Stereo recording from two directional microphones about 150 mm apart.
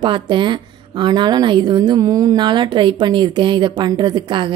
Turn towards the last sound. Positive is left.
turn(degrees=-30)  # may be behind; listen again after turning